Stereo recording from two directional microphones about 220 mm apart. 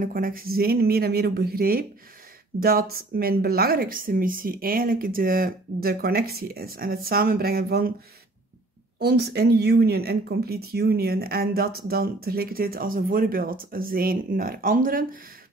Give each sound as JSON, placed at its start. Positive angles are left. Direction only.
{"t": 0.0, "sound": "speech", "side_deg": -40}
{"t": 9.0, "sound": "speech", "side_deg": -45}